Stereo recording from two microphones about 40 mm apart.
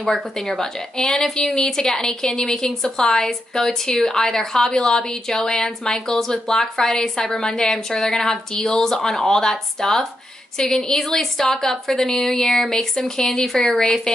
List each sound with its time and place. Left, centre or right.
0.4 s a woman's voice: centre